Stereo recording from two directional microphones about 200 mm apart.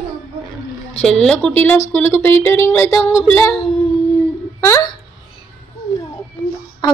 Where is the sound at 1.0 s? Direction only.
5° left (ahead or behind).